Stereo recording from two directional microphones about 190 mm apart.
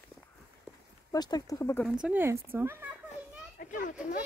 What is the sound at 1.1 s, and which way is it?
Speech, 20° left (ahead or behind).